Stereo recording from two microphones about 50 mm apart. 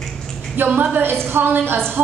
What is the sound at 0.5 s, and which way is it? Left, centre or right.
A woman's voice, right.